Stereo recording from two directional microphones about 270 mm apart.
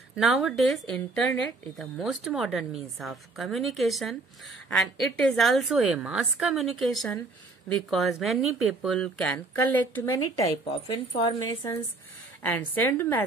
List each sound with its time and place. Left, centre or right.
0.1 s a woman's voice: centre
12.5 s a woman's voice: centre